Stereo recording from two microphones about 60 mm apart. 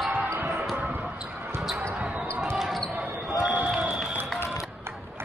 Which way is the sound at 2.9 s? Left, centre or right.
Right.